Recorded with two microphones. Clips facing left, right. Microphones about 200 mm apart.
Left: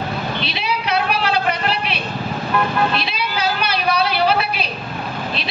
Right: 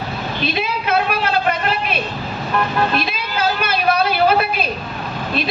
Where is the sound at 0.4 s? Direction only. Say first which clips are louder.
Right 2 dB; 50° right (ahead or behind).